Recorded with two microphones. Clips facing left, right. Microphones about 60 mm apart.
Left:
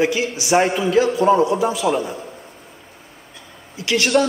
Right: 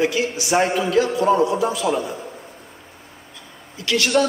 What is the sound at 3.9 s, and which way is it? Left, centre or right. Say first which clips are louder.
Speech: left 2 dB; centre.